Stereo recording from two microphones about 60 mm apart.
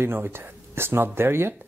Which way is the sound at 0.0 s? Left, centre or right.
Right.